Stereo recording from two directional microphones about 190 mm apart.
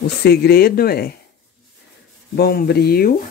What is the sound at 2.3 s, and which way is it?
Speech, 55° left (ahead or behind).